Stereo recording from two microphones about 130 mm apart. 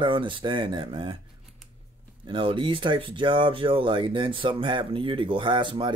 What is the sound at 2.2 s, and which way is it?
Speech, 40° right (ahead or behind).